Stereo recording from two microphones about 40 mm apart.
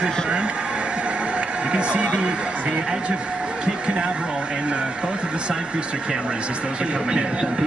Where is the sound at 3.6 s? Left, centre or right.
Right.